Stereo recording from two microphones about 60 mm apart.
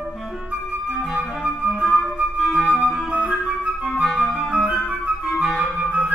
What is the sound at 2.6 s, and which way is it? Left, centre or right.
Flute, right.